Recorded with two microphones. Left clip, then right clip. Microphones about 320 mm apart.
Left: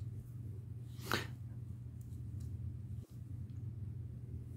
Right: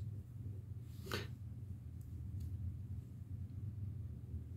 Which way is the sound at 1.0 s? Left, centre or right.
Left.